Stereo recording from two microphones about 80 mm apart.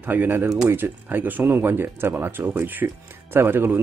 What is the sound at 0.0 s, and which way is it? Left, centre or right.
Speech, right.